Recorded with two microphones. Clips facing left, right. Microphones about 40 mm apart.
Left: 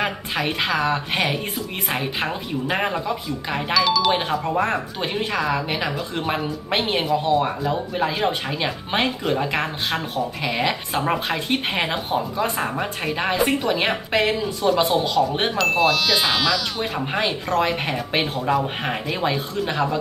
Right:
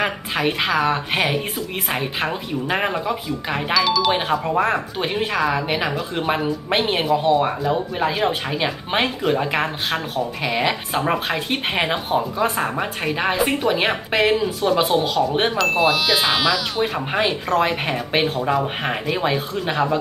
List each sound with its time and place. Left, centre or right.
0.0 s speech: centre
15.3 s speech: centre